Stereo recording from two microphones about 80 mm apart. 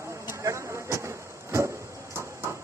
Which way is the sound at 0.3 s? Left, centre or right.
Right.